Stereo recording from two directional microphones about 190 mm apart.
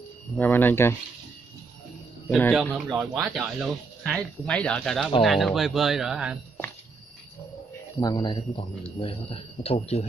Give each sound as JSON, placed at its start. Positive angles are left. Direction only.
{"t": 0.4, "sound": "speech", "side_deg": 10}
{"t": 2.2, "sound": "speech", "side_deg": 5}
{"t": 8.0, "sound": "speech", "side_deg": 25}